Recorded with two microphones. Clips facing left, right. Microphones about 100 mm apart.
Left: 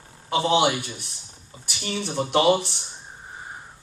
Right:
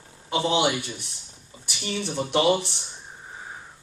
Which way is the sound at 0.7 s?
25° right (ahead or behind).